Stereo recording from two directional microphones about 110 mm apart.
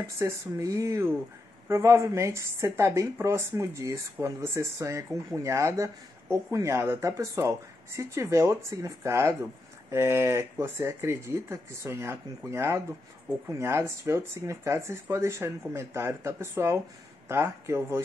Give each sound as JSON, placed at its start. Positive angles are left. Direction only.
{"t": 0.2, "sound": "a woman's voice", "side_deg": -30}